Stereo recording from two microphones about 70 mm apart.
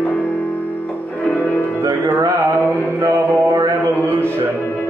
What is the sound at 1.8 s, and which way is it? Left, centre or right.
Music, right.